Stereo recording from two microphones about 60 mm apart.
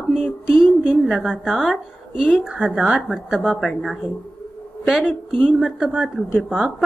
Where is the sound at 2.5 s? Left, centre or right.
Right.